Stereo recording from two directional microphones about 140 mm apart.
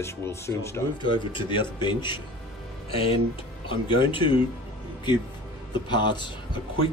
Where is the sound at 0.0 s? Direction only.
20° left (ahead or behind).